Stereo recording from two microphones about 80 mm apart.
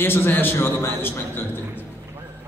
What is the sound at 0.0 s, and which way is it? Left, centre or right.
A man's voice, left.